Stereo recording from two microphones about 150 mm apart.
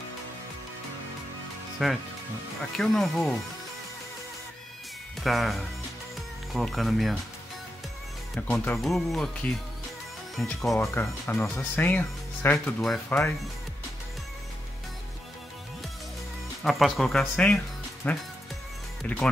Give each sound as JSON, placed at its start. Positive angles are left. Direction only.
{"t": 1.8, "sound": "speech", "side_deg": 0}
{"t": 5.2, "sound": "speech", "side_deg": 0}
{"t": 8.4, "sound": "speech", "side_deg": 10}
{"t": 10.8, "sound": "speech", "side_deg": 15}
{"t": 16.6, "sound": "speech", "side_deg": 0}